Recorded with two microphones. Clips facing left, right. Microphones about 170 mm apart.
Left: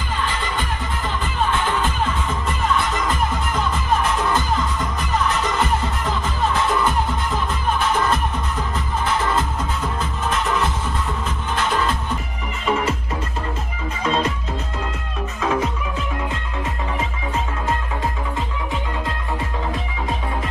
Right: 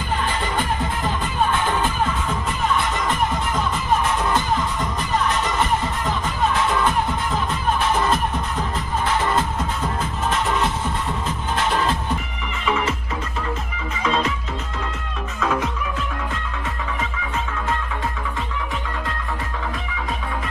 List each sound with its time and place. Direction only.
12.6 s music: 40° left (ahead or behind)